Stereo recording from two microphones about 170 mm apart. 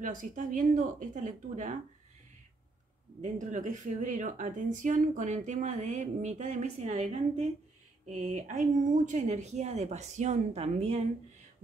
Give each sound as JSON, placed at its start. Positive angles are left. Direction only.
{"t": 0.0, "sound": "speech", "side_deg": -50}
{"t": 3.2, "sound": "speech", "side_deg": -45}